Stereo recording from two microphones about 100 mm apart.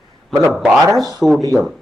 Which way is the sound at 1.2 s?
5° right (ahead or behind).